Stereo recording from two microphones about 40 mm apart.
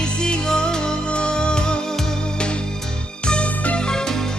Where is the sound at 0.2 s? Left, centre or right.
Centre.